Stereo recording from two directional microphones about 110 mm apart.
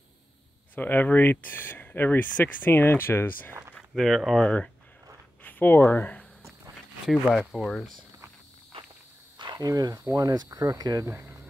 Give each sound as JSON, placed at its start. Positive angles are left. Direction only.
{"t": 0.7, "sound": "speech", "side_deg": 15}
{"t": 3.7, "sound": "speech", "side_deg": 0}
{"t": 7.3, "sound": "speech", "side_deg": 0}
{"t": 9.4, "sound": "speech", "side_deg": -40}
{"t": 11.1, "sound": "speech", "side_deg": -25}